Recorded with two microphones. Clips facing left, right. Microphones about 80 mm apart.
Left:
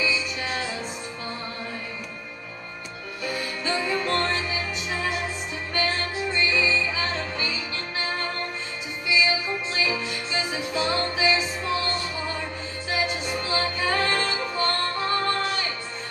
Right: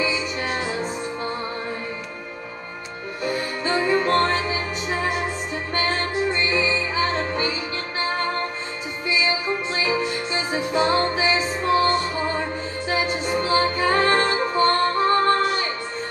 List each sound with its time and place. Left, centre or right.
0.0 s music: right
3.3 s music: right